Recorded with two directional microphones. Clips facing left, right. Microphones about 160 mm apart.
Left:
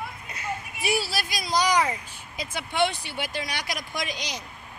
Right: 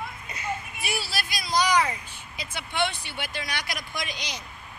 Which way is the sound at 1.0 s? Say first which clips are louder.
Left 3 dB; 40° left (ahead or behind).